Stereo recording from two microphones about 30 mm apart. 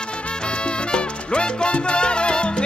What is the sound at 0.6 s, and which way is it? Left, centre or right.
Salsa music, left.